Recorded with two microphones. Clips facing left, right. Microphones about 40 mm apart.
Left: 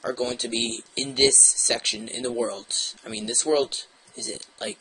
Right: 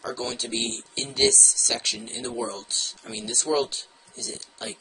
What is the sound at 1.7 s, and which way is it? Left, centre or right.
Speech, left.